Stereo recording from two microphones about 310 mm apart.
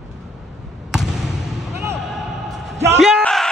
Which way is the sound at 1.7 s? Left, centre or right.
Centre.